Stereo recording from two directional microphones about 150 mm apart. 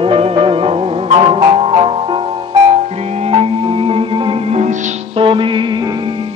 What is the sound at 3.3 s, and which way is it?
Music, 40° right (ahead or behind).